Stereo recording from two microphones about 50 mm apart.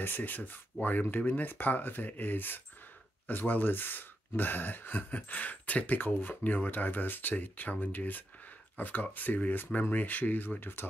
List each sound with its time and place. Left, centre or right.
0.0 s speech: left